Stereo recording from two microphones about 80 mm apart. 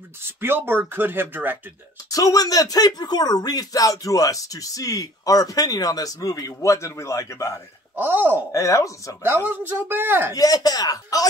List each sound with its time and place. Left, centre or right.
0.4 s speech: right
2.0 s speech: left
7.9 s speech: right
8.5 s speech: left
9.2 s speech: right
10.3 s speech: left